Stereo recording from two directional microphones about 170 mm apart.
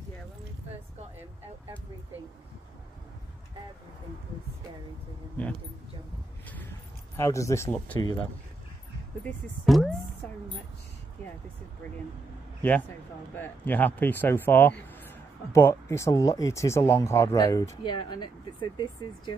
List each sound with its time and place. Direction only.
5.4 s speech: 10° left (ahead or behind)
7.2 s speech: 15° left (ahead or behind)
9.2 s speech: 5° left (ahead or behind)
13.3 s speech: 10° left (ahead or behind); by 19.3 s 25° left (ahead or behind)